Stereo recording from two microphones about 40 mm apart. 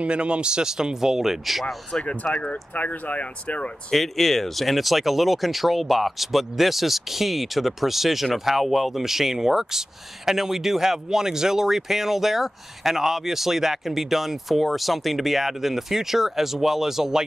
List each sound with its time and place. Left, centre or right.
0.0 s speech: right; by 2.0 s centre
2.2 s speech: left
2.7 s speech: left
3.9 s speech: centre